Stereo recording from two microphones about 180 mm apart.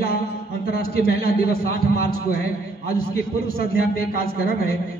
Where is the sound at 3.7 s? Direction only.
55° left (ahead or behind).